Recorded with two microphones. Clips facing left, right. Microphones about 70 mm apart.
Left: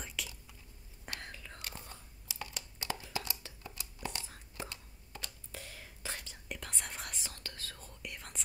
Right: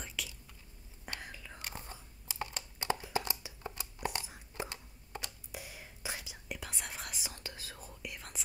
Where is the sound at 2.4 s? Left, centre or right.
Right.